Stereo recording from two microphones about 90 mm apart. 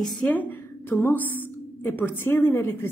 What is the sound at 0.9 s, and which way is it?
A woman's voice, 20° left (ahead or behind).